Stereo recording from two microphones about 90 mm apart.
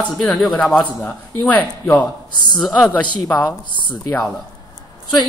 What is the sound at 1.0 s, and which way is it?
Speech, 20° left (ahead or behind).